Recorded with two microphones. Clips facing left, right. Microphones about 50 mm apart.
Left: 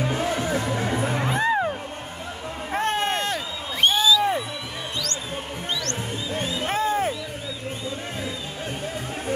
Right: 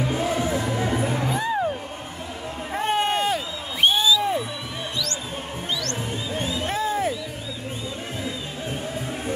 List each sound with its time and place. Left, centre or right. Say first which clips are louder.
1.3 s music: left 5 dB; left
2.8 s a sound: right 2 dB; centre
5.7 s music: right 1 dB; left